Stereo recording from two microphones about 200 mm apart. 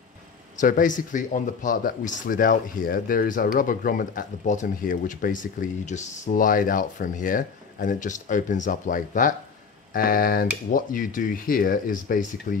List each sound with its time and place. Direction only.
0.6 s speech: 40° left (ahead or behind)